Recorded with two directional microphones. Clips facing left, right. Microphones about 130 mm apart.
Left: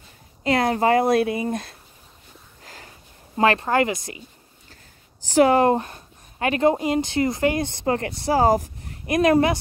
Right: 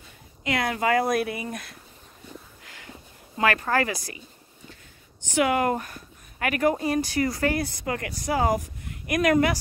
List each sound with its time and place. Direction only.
0.4 s speech: 30° left (ahead or behind)
2.6 s a sound: 35° left (ahead or behind)
3.3 s speech: 25° left (ahead or behind)
5.2 s speech: 35° left (ahead or behind)